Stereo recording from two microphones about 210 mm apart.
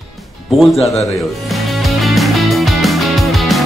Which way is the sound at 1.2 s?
Centre (ahead or behind).